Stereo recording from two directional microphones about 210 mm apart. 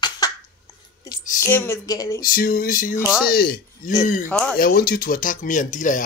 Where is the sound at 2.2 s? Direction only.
45° left (ahead or behind).